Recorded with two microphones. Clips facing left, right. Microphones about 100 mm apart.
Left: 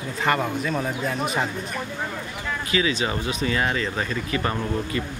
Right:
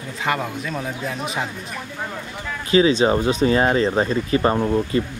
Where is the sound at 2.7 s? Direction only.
30° right (ahead or behind).